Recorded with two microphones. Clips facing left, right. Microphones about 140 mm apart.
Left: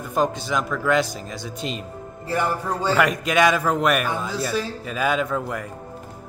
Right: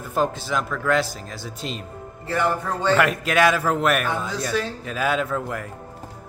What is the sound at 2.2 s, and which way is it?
Music, 10° left (ahead or behind).